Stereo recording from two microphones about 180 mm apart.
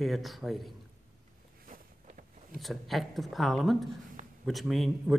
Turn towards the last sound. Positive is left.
turn(degrees=0)  # may be behind; listen again after turning